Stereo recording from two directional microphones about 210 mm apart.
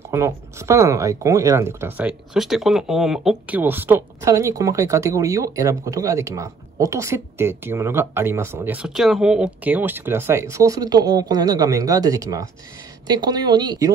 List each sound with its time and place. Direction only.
0.1 s speech: 15° right (ahead or behind)